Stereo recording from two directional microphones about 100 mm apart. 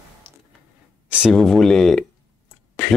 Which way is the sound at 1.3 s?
5° left (ahead or behind).